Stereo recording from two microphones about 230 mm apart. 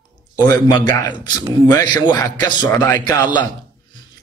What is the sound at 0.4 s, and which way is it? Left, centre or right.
Speech, centre.